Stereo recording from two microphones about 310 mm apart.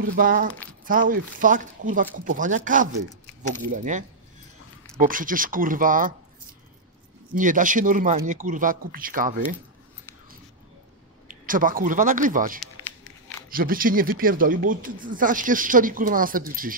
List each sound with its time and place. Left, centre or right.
0.0 s speech: right
5.0 s speech: right
7.3 s speech: right
11.2 s speech: right